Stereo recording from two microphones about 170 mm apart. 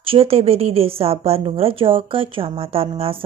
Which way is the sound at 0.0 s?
35° right (ahead or behind).